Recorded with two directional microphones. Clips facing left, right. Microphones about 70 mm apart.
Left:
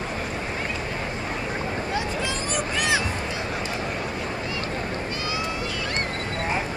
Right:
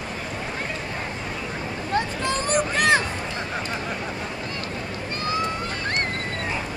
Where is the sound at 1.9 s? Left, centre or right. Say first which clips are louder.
Right 7 dB; right.